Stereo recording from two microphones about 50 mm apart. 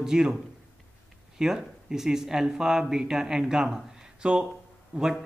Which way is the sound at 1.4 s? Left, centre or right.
Centre.